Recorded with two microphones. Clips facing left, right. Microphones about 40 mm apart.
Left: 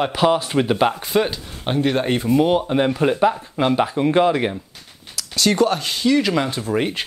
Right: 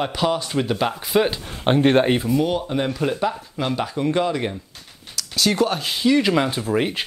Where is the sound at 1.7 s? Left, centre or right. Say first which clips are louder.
Right 3 dB; right.